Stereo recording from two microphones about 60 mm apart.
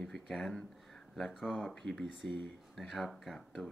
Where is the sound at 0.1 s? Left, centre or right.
Centre.